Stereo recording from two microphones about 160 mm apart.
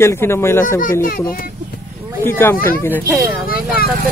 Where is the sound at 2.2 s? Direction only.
15° left (ahead or behind).